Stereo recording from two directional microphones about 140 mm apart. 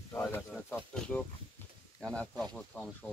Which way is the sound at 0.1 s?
15° left (ahead or behind).